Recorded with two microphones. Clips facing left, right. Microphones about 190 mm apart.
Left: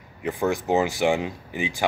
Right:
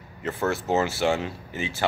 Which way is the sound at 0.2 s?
15° left (ahead or behind).